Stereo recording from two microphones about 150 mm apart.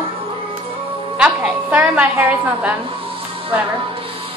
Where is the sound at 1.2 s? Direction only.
10° right (ahead or behind).